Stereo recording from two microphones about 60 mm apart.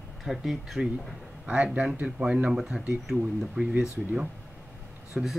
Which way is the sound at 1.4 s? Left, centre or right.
Centre.